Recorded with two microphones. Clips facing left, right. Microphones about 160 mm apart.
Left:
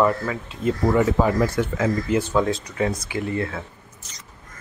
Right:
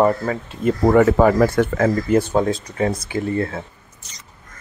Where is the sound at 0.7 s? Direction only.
55° right (ahead or behind).